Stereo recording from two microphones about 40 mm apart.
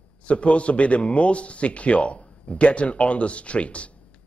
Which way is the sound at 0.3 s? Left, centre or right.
Left.